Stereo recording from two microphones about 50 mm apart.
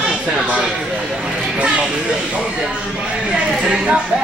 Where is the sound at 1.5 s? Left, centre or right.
Right.